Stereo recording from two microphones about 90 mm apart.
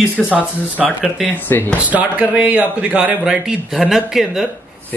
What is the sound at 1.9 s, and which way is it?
A man's voice, 15° right (ahead or behind).